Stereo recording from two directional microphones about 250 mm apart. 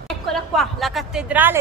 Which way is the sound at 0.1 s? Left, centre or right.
Centre.